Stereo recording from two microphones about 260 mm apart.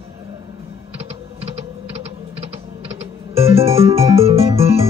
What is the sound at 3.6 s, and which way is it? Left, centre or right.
Music, right.